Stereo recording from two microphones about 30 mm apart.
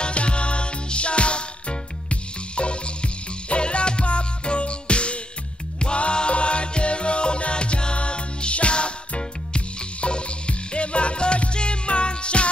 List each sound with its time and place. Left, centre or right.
0.0 s music: left